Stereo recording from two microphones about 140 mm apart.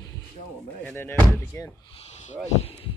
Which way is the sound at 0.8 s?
15° left (ahead or behind).